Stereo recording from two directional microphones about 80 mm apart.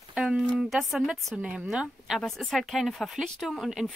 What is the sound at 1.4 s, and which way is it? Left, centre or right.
Speech, centre.